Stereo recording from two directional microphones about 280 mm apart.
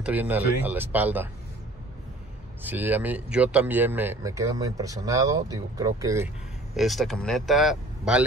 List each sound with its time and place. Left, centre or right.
0.0 s speech: centre
2.6 s speech: centre